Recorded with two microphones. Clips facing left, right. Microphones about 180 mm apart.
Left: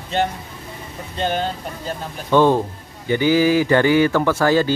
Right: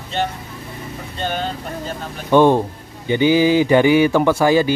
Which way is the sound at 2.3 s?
15° right (ahead or behind).